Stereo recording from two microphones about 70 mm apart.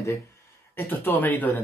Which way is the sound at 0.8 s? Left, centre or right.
Left.